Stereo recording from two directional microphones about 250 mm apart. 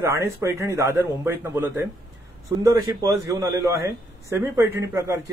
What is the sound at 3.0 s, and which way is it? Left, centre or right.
A man's voice, centre.